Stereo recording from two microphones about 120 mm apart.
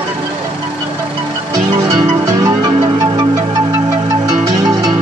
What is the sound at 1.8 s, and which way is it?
Music, 30° right (ahead or behind).